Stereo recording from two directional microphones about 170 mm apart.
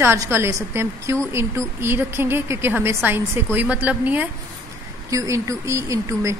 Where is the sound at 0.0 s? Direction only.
15° right (ahead or behind).